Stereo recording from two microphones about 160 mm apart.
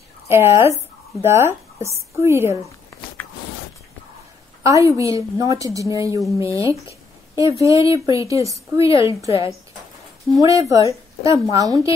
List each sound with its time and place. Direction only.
0.3 s speech: 15° right (ahead or behind)
4.6 s a woman's voice: 20° right (ahead or behind)
6.7 s a sound: 20° right (ahead or behind)
7.6 s a woman's voice: 20° right (ahead or behind)
10.4 s a woman's voice: 20° right (ahead or behind)